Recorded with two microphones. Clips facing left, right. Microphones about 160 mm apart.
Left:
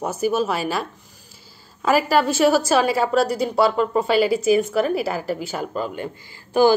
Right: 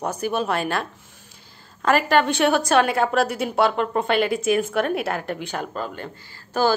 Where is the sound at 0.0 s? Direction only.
5° left (ahead or behind).